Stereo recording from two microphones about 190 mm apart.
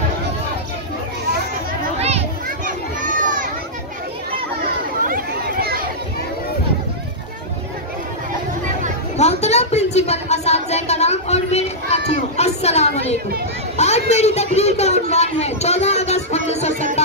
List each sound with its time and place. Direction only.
2.0 s children playing: 35° right (ahead or behind)
5.0 s chatter: 50° right (ahead or behind)
9.1 s a sound: 35° left (ahead or behind)